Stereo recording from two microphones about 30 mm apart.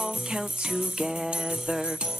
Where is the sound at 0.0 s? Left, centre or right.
Right.